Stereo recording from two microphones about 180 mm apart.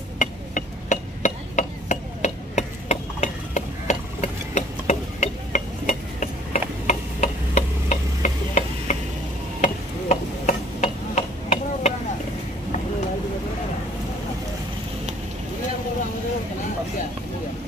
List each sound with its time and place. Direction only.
0.2 s hammer: 45° left (ahead or behind)
6.9 s tick-tock: 40° left (ahead or behind)